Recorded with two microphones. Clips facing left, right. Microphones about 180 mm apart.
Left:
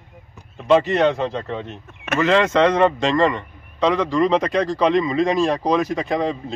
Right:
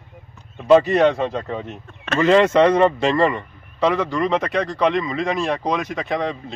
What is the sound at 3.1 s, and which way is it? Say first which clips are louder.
Speech: even; 15° left (ahead or behind).